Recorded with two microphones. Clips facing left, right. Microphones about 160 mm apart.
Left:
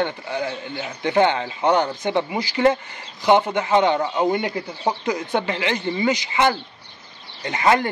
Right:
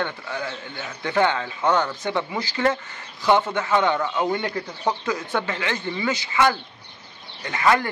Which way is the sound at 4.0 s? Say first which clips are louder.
Left 3 dB; 30° left (ahead or behind).